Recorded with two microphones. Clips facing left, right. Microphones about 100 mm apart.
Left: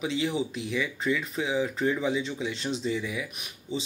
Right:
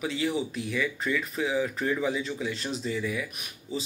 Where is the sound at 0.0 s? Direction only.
25° left (ahead or behind).